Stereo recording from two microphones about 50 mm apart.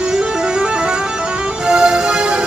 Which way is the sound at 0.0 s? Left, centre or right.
Centre.